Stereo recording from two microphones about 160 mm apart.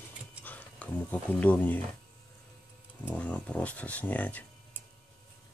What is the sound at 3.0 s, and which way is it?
Speech, 10° left (ahead or behind).